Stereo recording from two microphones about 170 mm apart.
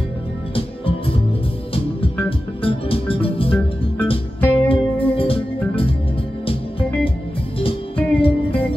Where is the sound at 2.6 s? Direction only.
30° left (ahead or behind).